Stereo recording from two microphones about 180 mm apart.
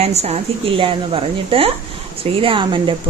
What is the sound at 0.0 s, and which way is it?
A woman's voice, 35° right (ahead or behind).